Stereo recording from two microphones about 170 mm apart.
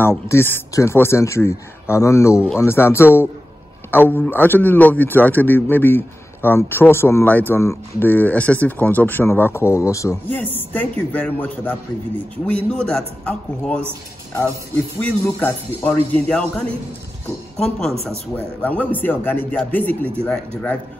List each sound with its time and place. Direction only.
0.3 s a man's voice: 15° left (ahead or behind)
15.0 s a man's voice: 10° left (ahead or behind)